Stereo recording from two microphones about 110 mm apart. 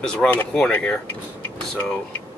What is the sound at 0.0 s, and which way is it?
Speech, 5° left (ahead or behind).